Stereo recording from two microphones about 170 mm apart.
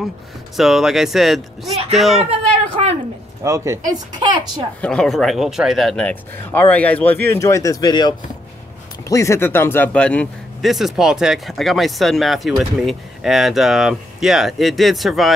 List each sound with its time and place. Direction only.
0.6 s speech: centre (ahead or behind)
3.4 s a woman's voice: 15° right (ahead or behind)
4.8 s speech: 5° left (ahead or behind)